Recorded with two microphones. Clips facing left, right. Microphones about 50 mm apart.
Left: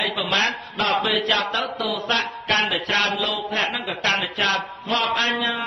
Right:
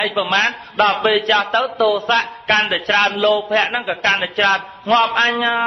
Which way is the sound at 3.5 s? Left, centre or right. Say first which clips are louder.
Right 7 dB; right.